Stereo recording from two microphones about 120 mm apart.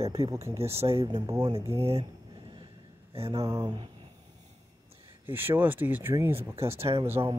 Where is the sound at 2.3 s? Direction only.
40° right (ahead or behind).